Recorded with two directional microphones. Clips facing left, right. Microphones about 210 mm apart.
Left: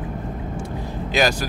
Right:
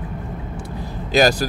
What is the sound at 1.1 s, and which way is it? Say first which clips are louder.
Speech: right 4 dB; 40° right (ahead or behind).